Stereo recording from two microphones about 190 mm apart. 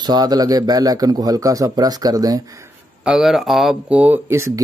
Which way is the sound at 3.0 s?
Centre (ahead or behind).